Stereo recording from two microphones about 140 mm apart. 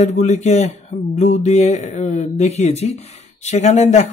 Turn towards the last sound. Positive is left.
turn(degrees=55)  # may be behind; listen again after turning